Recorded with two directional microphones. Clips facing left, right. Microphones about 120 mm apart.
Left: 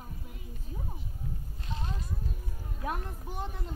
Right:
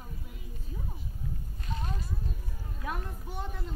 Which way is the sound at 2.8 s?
35° left (ahead or behind).